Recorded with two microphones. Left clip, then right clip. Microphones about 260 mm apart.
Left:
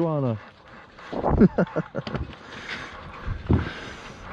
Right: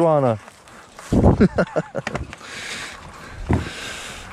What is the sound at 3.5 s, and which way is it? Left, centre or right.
Vehicle, centre.